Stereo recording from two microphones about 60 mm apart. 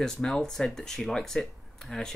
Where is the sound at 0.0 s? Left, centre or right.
Centre.